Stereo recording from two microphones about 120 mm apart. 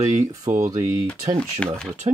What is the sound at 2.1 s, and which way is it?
Speech, 45° right (ahead or behind).